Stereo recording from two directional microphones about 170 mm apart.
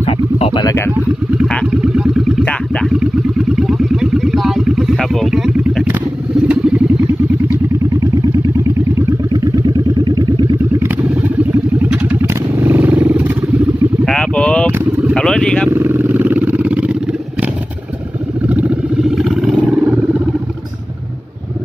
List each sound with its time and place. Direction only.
0.0 s a sound: 35° left (ahead or behind)
0.7 s speech: 15° left (ahead or behind)
1.7 s a sound: 5° right (ahead or behind)
6.4 s vehicle: 5° right (ahead or behind)
14.0 s boat: 5° left (ahead or behind)
14.7 s vehicle: 15° right (ahead or behind)
15.1 s vehicle: 5° left (ahead or behind)
15.7 s vehicle: 15° right (ahead or behind)
18.5 s vehicle: 5° right (ahead or behind)